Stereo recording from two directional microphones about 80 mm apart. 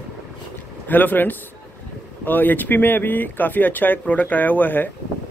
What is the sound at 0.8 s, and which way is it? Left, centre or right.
Speech, left.